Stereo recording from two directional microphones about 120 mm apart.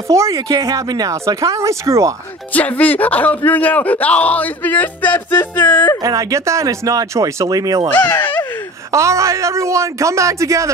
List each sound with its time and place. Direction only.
0.1 s speech: 25° right (ahead or behind)
2.5 s speech: 15° left (ahead or behind)
6.0 s speech: 25° right (ahead or behind)
7.9 s speech: 15° left (ahead or behind)
8.9 s speech: 25° right (ahead or behind)